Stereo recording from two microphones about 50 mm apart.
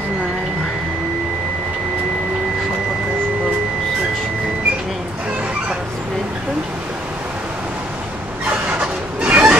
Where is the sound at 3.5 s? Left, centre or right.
Centre.